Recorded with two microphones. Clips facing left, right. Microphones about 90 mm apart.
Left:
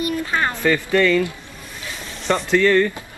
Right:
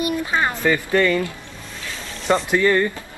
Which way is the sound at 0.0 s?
15° right (ahead or behind).